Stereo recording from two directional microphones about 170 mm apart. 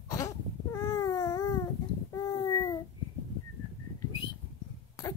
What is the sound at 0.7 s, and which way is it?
Baby cry, 20° left (ahead or behind).